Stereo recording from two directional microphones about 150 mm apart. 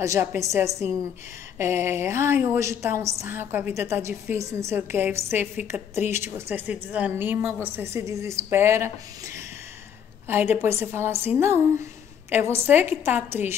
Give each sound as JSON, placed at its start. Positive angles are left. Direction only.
{"t": 0.0, "sound": "a woman's voice", "side_deg": -15}